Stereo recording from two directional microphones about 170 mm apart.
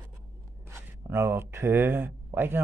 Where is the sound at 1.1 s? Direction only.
15° right (ahead or behind).